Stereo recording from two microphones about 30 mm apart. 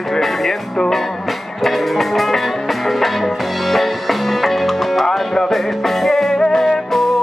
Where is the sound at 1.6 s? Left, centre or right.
Centre.